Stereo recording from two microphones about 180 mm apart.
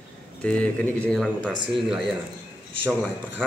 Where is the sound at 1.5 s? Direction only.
25° right (ahead or behind).